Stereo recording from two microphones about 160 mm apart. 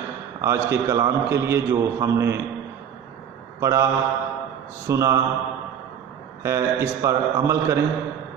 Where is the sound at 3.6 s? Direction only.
20° right (ahead or behind).